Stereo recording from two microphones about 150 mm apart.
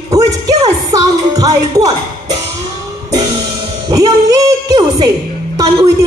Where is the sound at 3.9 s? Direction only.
25° right (ahead or behind).